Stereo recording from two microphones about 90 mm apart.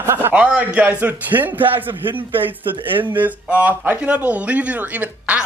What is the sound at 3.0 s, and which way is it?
A man's voice, 20° right (ahead or behind).